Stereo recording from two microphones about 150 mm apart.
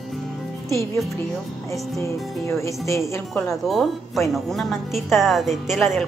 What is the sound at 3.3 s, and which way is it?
A woman's voice, centre (ahead or behind).